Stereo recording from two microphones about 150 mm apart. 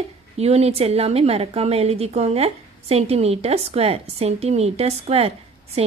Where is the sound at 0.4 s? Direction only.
45° right (ahead or behind).